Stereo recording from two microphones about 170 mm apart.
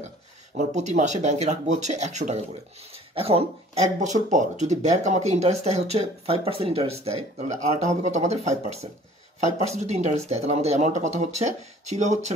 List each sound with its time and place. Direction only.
0.6 s speech: 45° right (ahead or behind)